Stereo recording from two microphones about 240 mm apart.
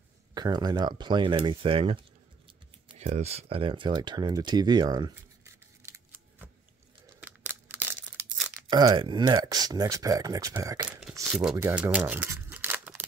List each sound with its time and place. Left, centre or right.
0.3 s speech: centre
2.9 s a sound: right; by 8.5 s centre
8.6 s speech: centre